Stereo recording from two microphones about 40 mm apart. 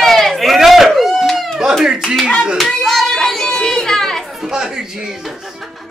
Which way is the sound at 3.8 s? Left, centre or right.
Centre.